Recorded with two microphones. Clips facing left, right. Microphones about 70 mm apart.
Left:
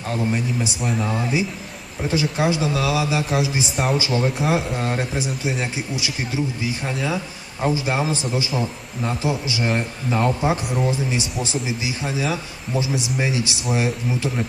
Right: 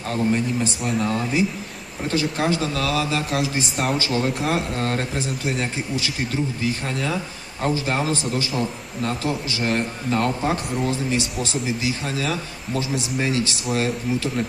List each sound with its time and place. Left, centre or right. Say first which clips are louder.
0.1 s a man's voice: right 2 dB; centre